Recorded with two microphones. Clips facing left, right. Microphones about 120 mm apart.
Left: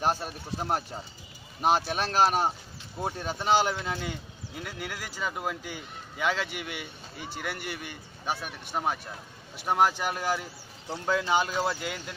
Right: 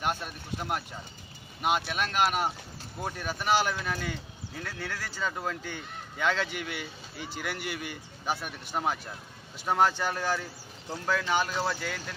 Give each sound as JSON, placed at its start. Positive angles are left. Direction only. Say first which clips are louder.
{"t": 0.0, "sound": "speech", "louder": "left 3 dB", "side_deg": 35}